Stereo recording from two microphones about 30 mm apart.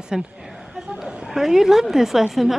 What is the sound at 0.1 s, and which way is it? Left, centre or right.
Speech, centre.